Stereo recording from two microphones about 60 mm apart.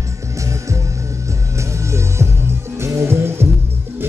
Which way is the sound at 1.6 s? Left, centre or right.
Right.